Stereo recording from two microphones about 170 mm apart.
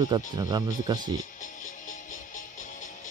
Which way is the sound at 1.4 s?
50° left (ahead or behind).